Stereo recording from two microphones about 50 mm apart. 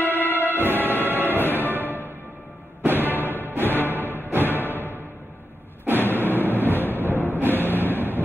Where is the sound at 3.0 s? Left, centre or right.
Left.